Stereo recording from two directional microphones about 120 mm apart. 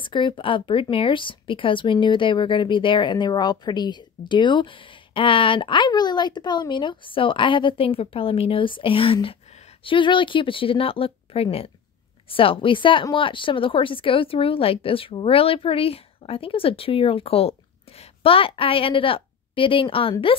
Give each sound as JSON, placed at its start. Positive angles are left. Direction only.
{"t": 0.0, "sound": "speech", "side_deg": 40}